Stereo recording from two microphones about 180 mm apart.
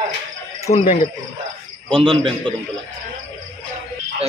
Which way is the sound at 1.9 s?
30° right (ahead or behind).